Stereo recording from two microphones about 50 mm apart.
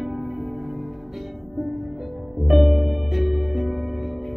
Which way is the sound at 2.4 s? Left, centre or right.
Centre.